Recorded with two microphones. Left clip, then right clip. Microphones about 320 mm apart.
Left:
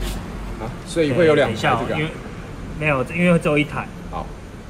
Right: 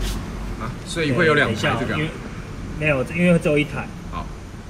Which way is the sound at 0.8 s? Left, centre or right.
Centre.